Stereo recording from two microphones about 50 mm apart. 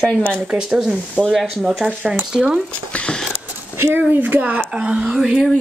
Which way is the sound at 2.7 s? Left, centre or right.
Left.